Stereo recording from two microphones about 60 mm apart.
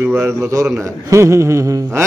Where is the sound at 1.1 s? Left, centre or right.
Right.